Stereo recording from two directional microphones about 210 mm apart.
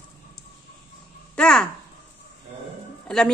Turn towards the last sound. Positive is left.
turn(degrees=5)  # may be behind; listen again after turning